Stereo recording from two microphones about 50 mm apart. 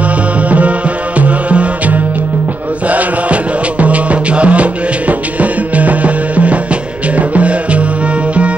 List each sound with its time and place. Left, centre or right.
0.5 s music: right
3.8 s music: right